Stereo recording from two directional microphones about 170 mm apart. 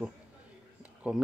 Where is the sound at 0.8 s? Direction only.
5° right (ahead or behind).